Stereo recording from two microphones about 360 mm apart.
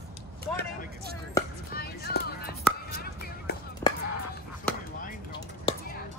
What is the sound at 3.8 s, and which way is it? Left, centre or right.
Music, centre.